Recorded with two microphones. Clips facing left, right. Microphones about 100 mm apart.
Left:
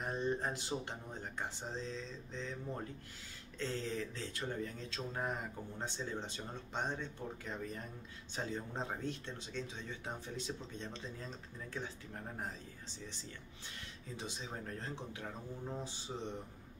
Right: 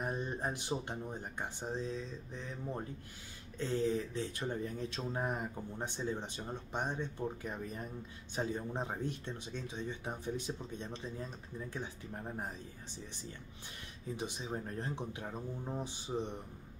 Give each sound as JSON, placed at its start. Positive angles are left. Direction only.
{"t": 0.0, "sound": "speech", "side_deg": -15}
{"t": 3.5, "sound": "speech", "side_deg": -15}
{"t": 14.1, "sound": "speech", "side_deg": -15}